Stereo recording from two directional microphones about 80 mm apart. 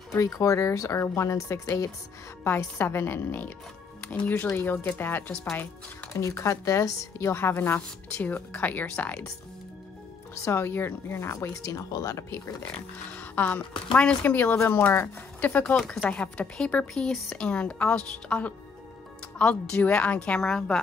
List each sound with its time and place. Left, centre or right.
0.1 s a woman's voice: left
6.1 s a woman's voice: left; by 9.3 s centre
10.3 s a woman's voice: left
11.6 s a woman's voice: left
13.1 s speech: left
15.6 s speech: centre